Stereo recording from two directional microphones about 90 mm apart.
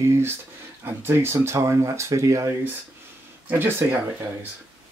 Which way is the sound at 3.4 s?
25° right (ahead or behind).